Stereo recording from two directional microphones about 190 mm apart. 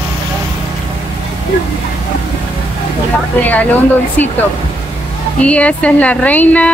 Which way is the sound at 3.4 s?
10° left (ahead or behind).